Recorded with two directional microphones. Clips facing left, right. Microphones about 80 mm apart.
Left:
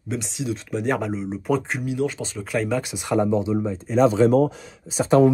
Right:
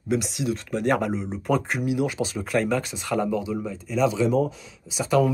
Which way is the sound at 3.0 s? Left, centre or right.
Left.